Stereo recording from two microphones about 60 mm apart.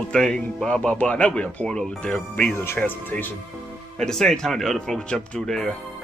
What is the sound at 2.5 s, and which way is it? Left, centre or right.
Speech, left.